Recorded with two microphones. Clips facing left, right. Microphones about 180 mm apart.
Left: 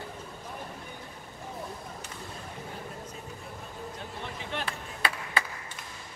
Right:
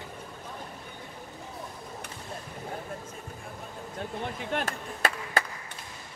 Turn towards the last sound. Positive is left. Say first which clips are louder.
# right 3 dB
turn(degrees=-45)  # may be behind; listen again after turning